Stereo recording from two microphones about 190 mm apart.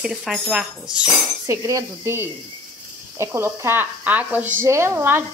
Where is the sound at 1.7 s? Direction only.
15° right (ahead or behind).